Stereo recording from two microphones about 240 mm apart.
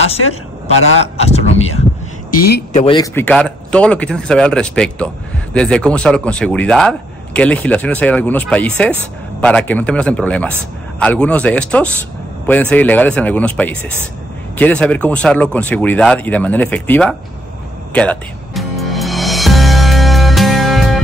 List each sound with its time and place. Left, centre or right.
1.1 s a sound: left
2.4 s speech: left
2.8 s speech: centre
3.2 s speech: centre
17.9 s music: centre